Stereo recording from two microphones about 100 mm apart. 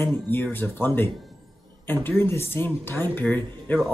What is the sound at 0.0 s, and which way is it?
Speech, 20° left (ahead or behind).